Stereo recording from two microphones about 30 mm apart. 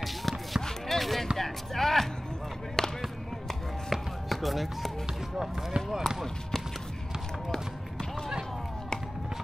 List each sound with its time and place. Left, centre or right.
0.0 s basketball bounce: centre
1.4 s a sound: centre
3.9 s chopping: centre
5.9 s speech: centre